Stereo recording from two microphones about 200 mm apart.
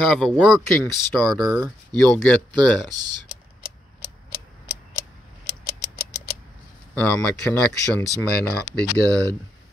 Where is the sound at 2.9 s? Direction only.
20° right (ahead or behind).